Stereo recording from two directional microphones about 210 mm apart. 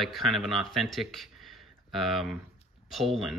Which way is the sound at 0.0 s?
Centre (ahead or behind).